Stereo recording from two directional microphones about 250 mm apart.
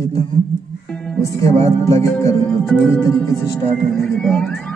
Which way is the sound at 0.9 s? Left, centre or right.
Centre.